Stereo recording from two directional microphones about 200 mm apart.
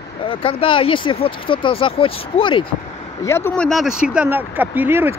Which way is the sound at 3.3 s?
10° left (ahead or behind).